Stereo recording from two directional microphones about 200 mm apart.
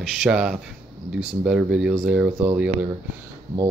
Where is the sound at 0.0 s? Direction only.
Centre (ahead or behind).